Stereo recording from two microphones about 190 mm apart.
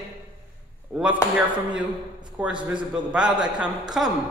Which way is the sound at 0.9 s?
5° right (ahead or behind).